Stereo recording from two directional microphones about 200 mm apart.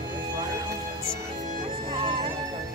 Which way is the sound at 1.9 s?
25° right (ahead or behind).